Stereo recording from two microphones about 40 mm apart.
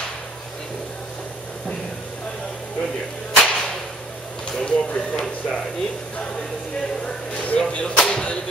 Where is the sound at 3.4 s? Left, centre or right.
Centre.